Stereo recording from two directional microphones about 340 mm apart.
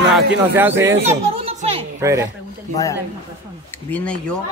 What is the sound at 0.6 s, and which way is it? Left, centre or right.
Speech, centre.